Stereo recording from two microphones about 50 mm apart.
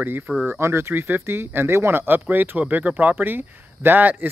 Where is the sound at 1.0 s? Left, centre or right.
Right.